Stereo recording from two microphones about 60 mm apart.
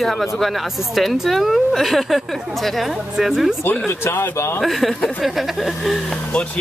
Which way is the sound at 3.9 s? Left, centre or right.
Left.